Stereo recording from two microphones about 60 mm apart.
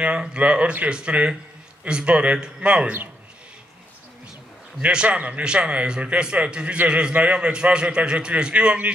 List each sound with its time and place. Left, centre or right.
0.0 s speech: centre
4.7 s a man's voice: centre